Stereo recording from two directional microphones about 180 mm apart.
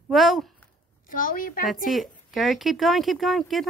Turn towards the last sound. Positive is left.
turn(degrees=0)  # may be behind; listen again after turning